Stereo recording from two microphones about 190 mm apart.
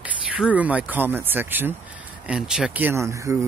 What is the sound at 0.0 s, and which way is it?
Speech, 5° right (ahead or behind).